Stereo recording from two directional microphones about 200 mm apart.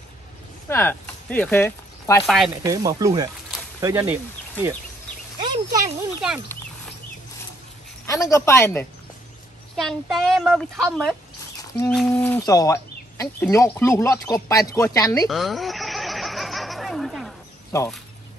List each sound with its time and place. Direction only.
0.7 s speech: 10° left (ahead or behind)
2.2 s a woman's voice: centre (ahead or behind)
2.5 s speech: 15° right (ahead or behind)
5.4 s a sound: 25° right (ahead or behind)
8.1 s speech: 15° left (ahead or behind)
9.8 s a woman's voice: centre (ahead or behind); by 15.2 s 15° left (ahead or behind)
15.2 s a sound: centre (ahead or behind)
17.7 s speech: 15° left (ahead or behind)